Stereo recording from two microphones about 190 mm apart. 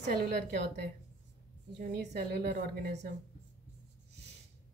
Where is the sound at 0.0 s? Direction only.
55° right (ahead or behind).